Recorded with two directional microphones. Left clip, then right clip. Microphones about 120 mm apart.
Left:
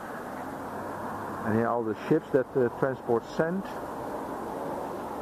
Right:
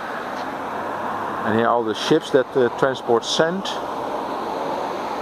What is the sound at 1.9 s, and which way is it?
Speech, 40° right (ahead or behind).